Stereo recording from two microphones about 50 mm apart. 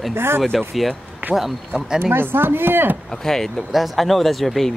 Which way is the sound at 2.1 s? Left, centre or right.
Right.